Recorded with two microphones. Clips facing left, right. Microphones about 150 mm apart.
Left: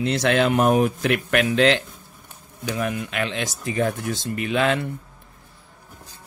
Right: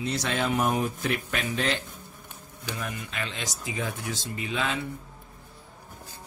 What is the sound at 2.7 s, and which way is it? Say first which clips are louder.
Speech: left 10 dB; 70° left (ahead or behind).